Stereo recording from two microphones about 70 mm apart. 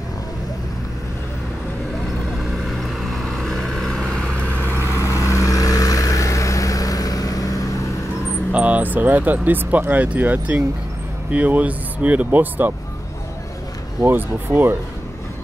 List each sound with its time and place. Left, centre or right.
2.5 s vehicle: centre
4.8 s vehicle: left
8.5 s speech: centre
14.0 s speech: right